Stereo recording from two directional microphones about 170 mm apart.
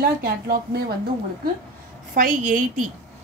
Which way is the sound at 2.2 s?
50° right (ahead or behind).